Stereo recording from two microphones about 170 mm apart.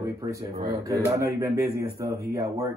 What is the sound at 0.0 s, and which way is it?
A man's voice, 20° right (ahead or behind).